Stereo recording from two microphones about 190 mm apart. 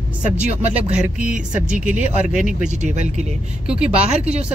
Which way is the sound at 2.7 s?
40° right (ahead or behind).